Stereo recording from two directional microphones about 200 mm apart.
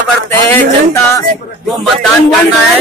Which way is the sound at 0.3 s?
10° left (ahead or behind).